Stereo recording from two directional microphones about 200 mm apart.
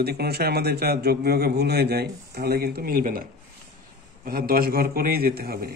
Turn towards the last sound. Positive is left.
turn(degrees=-50)  # may be behind; listen again after turning